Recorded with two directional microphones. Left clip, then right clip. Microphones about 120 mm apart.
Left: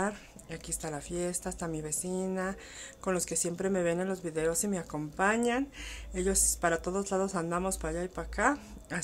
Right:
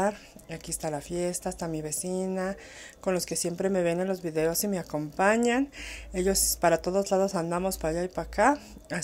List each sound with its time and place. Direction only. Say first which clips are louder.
0.0 s speech: right 6 dB; 20° right (ahead or behind)